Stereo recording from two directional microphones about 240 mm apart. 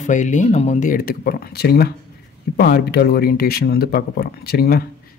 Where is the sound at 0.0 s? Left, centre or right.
Left.